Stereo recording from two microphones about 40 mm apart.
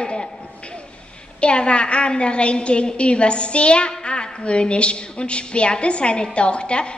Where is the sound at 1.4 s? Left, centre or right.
Left.